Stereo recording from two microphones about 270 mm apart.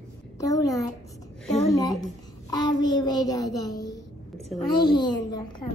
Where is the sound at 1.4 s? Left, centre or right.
Centre.